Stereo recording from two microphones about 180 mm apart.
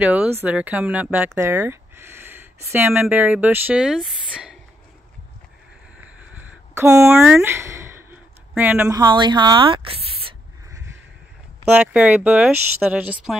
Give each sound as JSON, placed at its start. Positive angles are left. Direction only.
{"t": 0.0, "sound": "speech", "side_deg": -10}
{"t": 6.7, "sound": "speech", "side_deg": -15}
{"t": 7.4, "sound": "a sound", "side_deg": -15}
{"t": 8.9, "sound": "speech", "side_deg": -25}
{"t": 11.7, "sound": "speech", "side_deg": -5}